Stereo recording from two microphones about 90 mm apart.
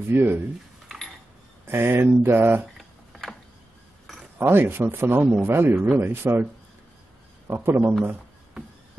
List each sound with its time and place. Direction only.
0.1 s speech: 25° right (ahead or behind)
1.7 s speech: 25° right (ahead or behind)
2.6 s a sound: centre (ahead or behind)
4.4 s speech: 25° right (ahead or behind)
7.4 s speech: 25° right (ahead or behind)